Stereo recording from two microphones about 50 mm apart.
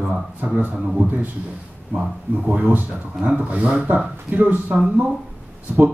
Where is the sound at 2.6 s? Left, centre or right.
Right.